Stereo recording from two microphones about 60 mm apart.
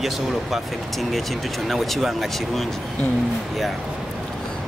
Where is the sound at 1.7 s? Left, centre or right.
Centre.